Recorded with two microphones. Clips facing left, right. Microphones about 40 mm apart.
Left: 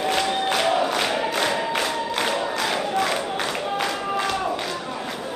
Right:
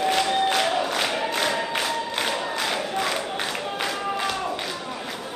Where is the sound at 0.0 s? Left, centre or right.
Centre.